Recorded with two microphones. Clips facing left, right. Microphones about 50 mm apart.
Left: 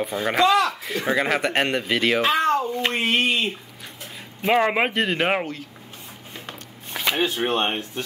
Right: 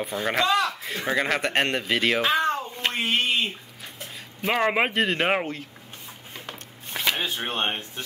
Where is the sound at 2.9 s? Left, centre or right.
Left.